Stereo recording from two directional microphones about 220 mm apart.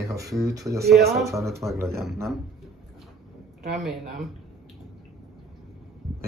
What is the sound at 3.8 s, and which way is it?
Speech, centre (ahead or behind).